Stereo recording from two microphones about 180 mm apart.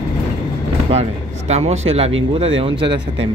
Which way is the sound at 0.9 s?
35° right (ahead or behind).